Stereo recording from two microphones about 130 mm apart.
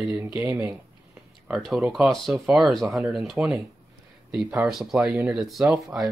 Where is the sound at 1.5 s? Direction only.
Centre (ahead or behind).